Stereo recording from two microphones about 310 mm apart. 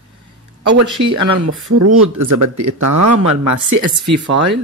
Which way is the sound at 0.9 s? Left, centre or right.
Right.